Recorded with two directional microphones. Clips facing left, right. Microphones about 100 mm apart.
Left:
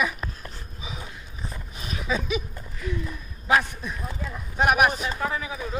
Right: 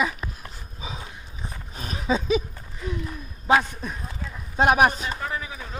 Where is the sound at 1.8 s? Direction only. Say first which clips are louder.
Right 3 dB; 35° right (ahead or behind).